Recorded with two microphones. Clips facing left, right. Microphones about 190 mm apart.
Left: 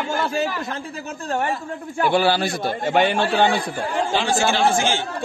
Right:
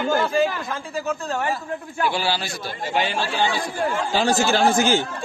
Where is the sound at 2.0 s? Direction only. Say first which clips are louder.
Left 6 dB; 55° left (ahead or behind).